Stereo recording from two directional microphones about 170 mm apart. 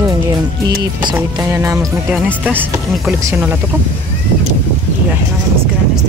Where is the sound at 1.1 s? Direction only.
15° right (ahead or behind).